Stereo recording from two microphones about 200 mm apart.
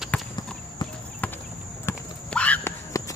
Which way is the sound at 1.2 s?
10° left (ahead or behind).